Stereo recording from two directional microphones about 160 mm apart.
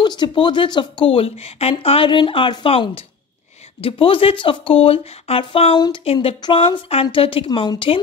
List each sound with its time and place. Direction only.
0.0 s speech: 30° left (ahead or behind)